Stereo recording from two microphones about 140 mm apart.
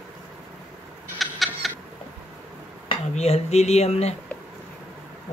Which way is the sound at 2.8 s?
50° left (ahead or behind).